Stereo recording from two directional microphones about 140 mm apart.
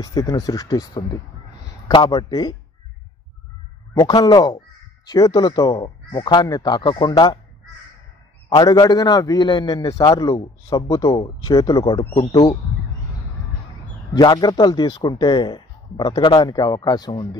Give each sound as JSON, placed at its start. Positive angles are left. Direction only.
{"t": 0.0, "sound": "a man's voice", "side_deg": 25}
{"t": 4.0, "sound": "a man's voice", "side_deg": 25}
{"t": 8.5, "sound": "a man's voice", "side_deg": 30}
{"t": 14.1, "sound": "speech", "side_deg": 30}